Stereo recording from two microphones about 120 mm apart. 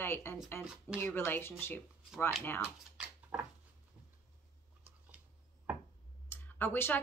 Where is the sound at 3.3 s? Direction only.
15° right (ahead or behind).